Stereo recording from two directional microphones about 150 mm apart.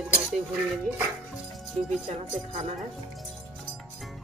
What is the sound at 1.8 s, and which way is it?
Speech, 45° right (ahead or behind).